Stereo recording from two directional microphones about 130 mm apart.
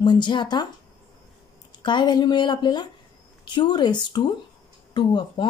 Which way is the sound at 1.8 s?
35° left (ahead or behind).